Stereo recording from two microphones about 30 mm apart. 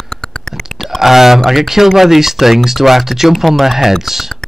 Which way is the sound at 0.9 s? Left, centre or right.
Centre.